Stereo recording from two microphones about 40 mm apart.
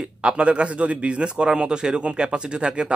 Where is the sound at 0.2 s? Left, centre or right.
Right.